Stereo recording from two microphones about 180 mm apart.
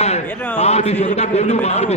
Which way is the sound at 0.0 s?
35° left (ahead or behind).